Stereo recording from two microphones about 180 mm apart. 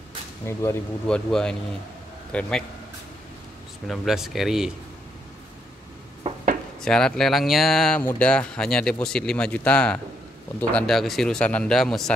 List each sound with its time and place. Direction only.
0.5 s speech: 15° left (ahead or behind)
1.0 s speech: 5° left (ahead or behind)
3.8 s speech: centre (ahead or behind)
6.8 s speech: 5° left (ahead or behind)